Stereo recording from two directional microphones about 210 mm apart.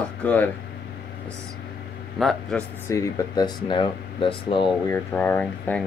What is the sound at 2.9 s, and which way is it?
Speech, 15° left (ahead or behind).